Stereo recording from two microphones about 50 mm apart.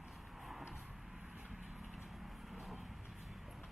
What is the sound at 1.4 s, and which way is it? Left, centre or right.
Vehicle, centre.